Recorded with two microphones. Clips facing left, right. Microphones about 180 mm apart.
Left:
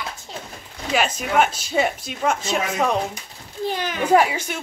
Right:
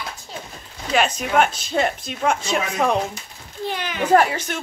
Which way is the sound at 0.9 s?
5° left (ahead or behind).